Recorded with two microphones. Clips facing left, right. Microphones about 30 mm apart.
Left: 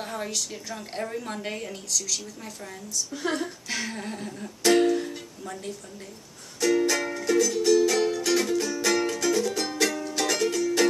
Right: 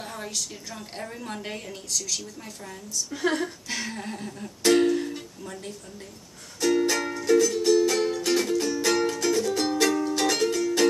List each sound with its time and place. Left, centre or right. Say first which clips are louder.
0.0 s a sound: left 3 dB; centre
0.7 s a woman's voice: left 4 dB; centre
1.9 s a woman's voice: even; centre
3.1 s a woman's voice: right 3 dB; centre
3.6 s music: left 1 dB; centre
5.4 s speech: left 1 dB; centre
6.7 s music: even; centre